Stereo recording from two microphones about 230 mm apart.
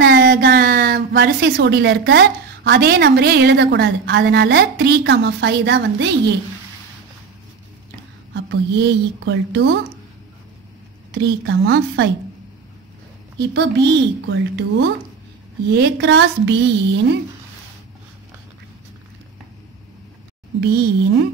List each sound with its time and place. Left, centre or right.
0.0 s a woman's voice: right
8.3 s speech: right
11.1 s speech: right
13.4 s speech: right